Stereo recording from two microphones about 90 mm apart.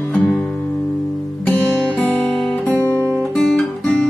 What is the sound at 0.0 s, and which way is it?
Music, 15° left (ahead or behind).